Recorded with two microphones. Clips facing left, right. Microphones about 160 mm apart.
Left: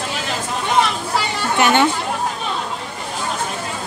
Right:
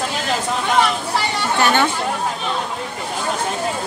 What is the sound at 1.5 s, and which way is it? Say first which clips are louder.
Chatter: left 2 dB; 20° left (ahead or behind).